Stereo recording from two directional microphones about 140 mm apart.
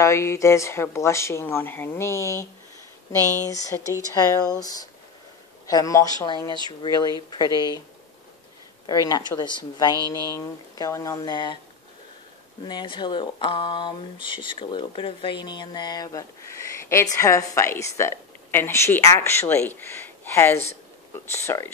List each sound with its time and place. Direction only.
0.0 s speech: 20° left (ahead or behind)
3.4 s speech: 25° left (ahead or behind)
8.8 s speech: 30° left (ahead or behind)
10.0 s speech: 25° right (ahead or behind)
10.3 s speech: 25° left (ahead or behind)
12.6 s speech: 35° left (ahead or behind)